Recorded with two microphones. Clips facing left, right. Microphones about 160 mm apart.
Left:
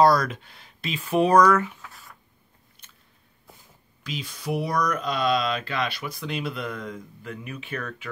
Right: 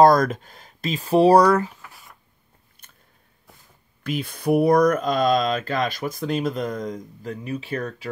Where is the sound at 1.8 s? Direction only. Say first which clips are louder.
Even; 10° right (ahead or behind).